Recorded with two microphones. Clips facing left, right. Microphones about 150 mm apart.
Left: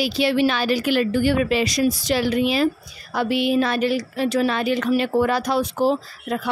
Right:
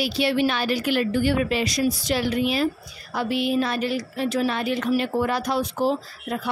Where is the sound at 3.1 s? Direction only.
70° left (ahead or behind); by 6.4 s 90° left.